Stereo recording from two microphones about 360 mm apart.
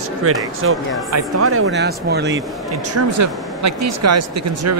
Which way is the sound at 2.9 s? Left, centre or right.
Right.